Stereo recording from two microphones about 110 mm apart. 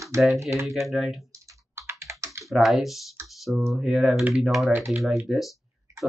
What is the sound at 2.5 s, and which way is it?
Speech, centre (ahead or behind).